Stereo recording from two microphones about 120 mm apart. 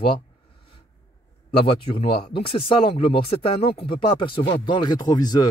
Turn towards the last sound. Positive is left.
turn(degrees=35)  # may be behind; listen again after turning